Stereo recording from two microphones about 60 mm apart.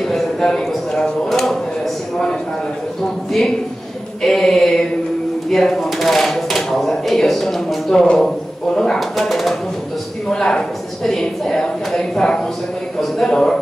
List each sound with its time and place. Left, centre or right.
0.1 s speech: centre
4.2 s speech: centre